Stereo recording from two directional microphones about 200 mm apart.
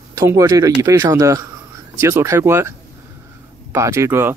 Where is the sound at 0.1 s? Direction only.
15° right (ahead or behind).